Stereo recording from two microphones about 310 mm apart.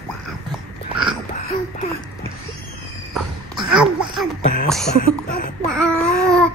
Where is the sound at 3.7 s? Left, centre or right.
Centre.